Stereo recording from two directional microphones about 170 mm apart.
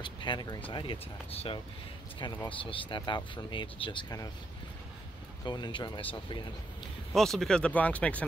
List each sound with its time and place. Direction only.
0.0 s speech: 25° left (ahead or behind)
2.6 s speech: 30° left (ahead or behind)
5.4 s speech: 25° left (ahead or behind)
7.1 s speech: centre (ahead or behind)